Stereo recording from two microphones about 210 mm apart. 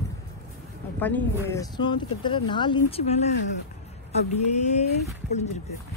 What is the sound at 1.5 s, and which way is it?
Speech, 20° left (ahead or behind).